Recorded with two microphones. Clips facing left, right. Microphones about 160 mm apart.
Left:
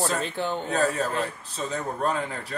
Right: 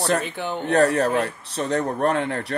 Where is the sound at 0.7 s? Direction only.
75° right (ahead or behind).